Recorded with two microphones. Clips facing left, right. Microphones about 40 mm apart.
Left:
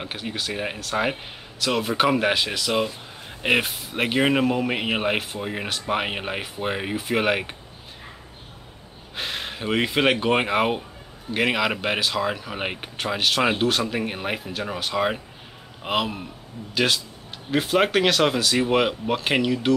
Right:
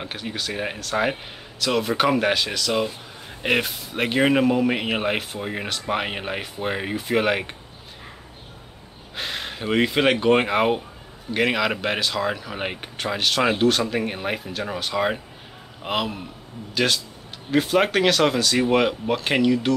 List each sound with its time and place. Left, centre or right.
0.0 s speech: centre
9.1 s speech: centre